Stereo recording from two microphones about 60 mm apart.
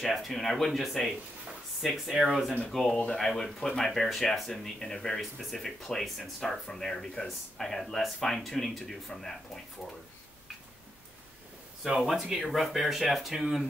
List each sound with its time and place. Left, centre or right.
0.0 s speech: centre
12.0 s speech: centre